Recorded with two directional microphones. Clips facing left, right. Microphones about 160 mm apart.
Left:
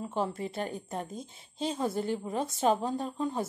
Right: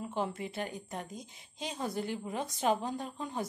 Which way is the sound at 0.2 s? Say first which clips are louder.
Left 3 dB; 35° left (ahead or behind).